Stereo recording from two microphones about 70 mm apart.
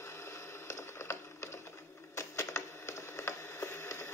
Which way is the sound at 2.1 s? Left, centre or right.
Left.